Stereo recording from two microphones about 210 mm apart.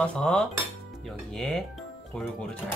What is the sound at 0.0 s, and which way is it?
Speech, 5° left (ahead or behind).